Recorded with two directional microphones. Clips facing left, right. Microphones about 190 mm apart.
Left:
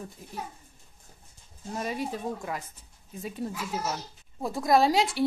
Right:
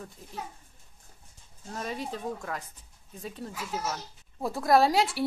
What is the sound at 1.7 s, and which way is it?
Speech, 5° left (ahead or behind).